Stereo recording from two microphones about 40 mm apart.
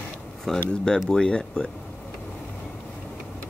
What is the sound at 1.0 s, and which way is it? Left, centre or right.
Speech, centre.